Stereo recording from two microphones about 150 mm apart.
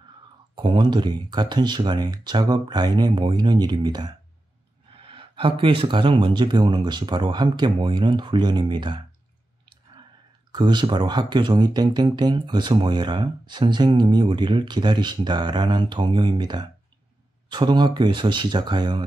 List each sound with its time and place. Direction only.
0.6 s speech: 30° right (ahead or behind)
10.5 s speech: 30° right (ahead or behind)